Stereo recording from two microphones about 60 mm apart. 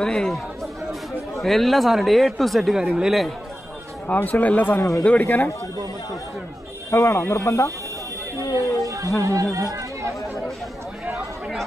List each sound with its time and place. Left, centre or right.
0.0 s speech: centre
4.1 s speech: left
6.9 s speech: left
8.5 s a sound: right
9.2 s speech: right